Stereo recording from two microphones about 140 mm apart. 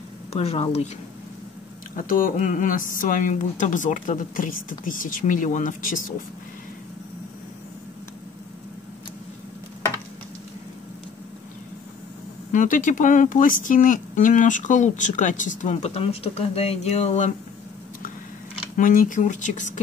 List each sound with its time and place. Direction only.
0.3 s speech: 45° left (ahead or behind)
2.0 s a woman's voice: 80° left
12.5 s speech: 70° left (ahead or behind); by 17.3 s 55° left (ahead or behind)
18.8 s speech: 75° left (ahead or behind)